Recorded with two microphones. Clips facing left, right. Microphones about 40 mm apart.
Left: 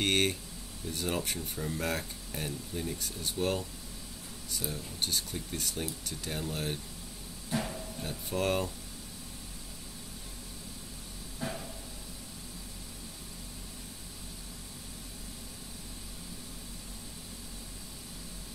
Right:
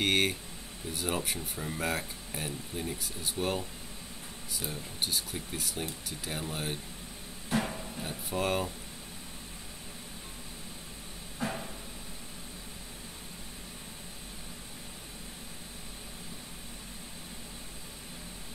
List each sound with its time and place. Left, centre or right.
0.0 s speech: centre
4.6 s speech: right
5.0 s speech: centre
7.4 s a sound: right
8.0 s speech: centre
11.4 s a sound: right